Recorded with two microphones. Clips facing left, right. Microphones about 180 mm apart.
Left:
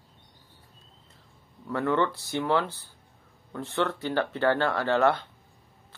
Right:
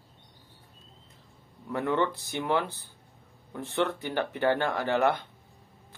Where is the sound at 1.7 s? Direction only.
15° right (ahead or behind).